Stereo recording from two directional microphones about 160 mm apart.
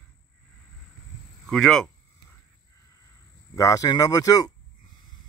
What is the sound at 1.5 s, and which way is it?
Speech, 5° left (ahead or behind).